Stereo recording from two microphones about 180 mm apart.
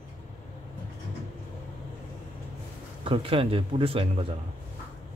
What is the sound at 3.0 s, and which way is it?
Speech, 30° right (ahead or behind).